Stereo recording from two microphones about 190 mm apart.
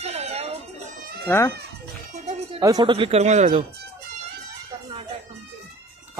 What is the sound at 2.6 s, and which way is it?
Speech, 20° right (ahead or behind).